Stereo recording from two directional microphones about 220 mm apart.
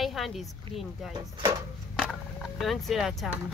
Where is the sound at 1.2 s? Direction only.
15° right (ahead or behind).